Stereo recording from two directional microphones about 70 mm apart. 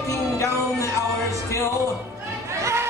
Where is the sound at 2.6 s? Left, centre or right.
Right.